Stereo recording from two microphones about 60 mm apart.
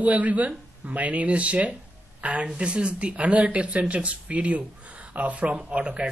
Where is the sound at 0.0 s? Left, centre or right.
Right.